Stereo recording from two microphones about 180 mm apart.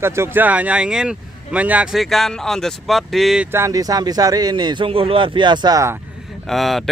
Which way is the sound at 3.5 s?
15° right (ahead or behind).